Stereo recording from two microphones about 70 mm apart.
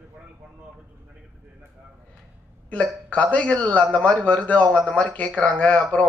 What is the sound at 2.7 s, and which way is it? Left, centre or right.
A man's voice, centre.